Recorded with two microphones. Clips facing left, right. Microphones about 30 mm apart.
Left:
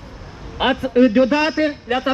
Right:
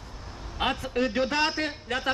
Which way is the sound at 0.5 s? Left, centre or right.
Left.